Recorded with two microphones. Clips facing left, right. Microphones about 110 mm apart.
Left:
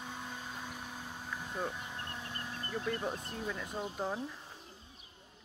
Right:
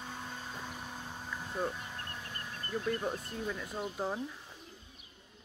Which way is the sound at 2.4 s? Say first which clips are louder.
Left 1 dB; 15° left (ahead or behind).